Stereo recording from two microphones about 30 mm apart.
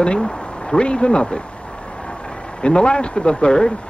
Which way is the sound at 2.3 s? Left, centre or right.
Left.